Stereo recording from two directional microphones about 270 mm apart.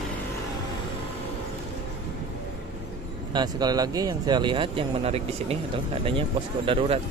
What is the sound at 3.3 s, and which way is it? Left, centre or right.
Speech, centre.